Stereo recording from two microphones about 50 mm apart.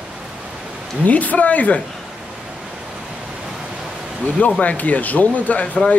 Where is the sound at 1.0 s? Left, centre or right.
Left.